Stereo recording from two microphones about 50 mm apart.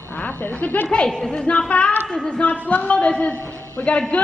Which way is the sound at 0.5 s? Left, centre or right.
Left.